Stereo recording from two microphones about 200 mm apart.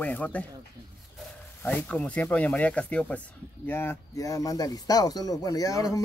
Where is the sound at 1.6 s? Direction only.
5° left (ahead or behind).